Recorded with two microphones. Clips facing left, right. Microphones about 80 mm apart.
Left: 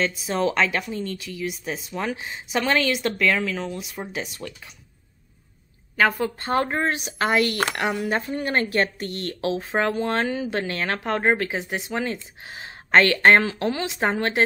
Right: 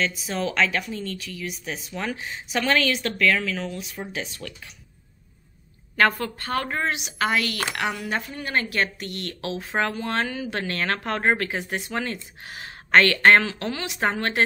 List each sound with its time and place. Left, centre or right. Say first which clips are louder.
0.0 s speech: left 3 dB; left
5.9 s a woman's voice: even; centre
6.2 s speech: left 4 dB; left